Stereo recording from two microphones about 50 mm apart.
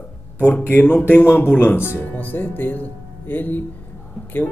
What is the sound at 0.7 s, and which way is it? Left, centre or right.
Speech, left.